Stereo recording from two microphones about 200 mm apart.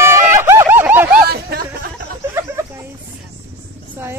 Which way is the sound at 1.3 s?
50° right (ahead or behind).